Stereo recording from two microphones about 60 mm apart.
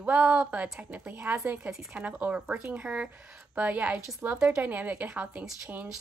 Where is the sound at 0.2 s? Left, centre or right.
Right.